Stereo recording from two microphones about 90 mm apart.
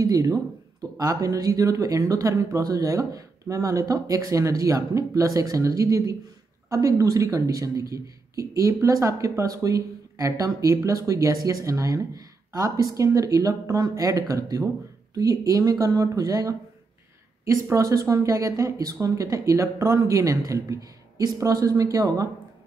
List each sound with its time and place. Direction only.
0.0 s speech: 40° right (ahead or behind)